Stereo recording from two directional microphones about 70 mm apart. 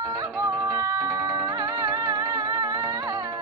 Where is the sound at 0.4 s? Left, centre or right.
Right.